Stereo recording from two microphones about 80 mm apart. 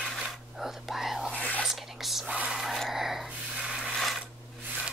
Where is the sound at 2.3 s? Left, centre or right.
Centre.